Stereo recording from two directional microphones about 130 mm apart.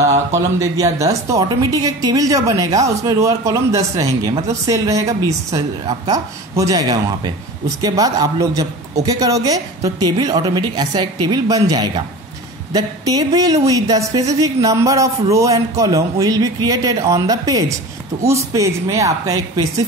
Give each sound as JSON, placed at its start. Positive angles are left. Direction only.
{"t": 0.3, "sound": "a woman's voice", "side_deg": -25}